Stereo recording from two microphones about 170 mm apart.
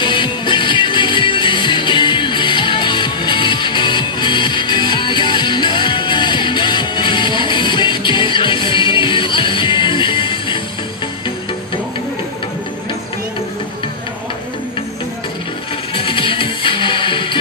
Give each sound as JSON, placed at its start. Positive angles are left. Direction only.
{"t": 0.0, "sound": "music", "side_deg": 30}
{"t": 15.9, "sound": "music", "side_deg": 30}